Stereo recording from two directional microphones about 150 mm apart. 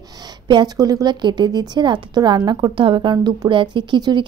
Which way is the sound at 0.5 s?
25° right (ahead or behind).